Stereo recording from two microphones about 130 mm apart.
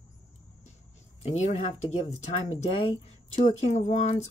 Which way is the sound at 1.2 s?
55° left (ahead or behind).